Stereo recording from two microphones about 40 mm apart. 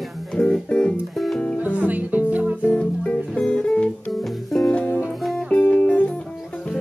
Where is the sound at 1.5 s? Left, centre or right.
Right.